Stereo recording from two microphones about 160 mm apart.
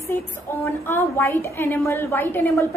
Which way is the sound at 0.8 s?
15° left (ahead or behind).